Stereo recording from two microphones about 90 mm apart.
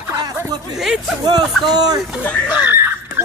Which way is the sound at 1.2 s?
50° right (ahead or behind).